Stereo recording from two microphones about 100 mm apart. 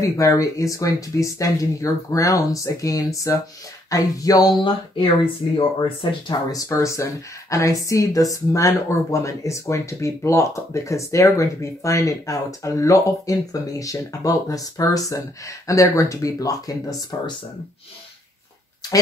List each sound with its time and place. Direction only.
0.0 s speech: 35° left (ahead or behind); by 5.3 s 55° left (ahead or behind)
5.8 s speech: 40° left (ahead or behind)